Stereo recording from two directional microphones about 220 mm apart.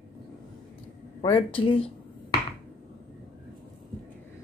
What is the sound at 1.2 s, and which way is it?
Speech, 20° left (ahead or behind).